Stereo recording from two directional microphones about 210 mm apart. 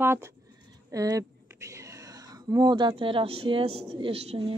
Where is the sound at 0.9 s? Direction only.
15° right (ahead or behind).